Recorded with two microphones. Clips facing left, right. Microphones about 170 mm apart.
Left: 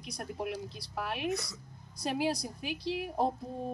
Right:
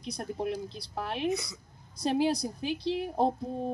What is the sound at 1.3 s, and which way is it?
Speech, centre (ahead or behind).